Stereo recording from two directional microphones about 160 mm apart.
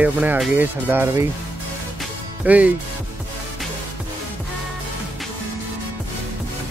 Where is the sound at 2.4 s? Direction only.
10° right (ahead or behind).